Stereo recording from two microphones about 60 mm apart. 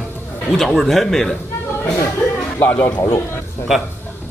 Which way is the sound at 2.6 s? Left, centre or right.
Left.